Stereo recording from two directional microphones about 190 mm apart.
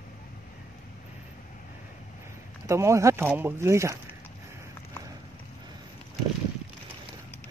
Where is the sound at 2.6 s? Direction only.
15° right (ahead or behind).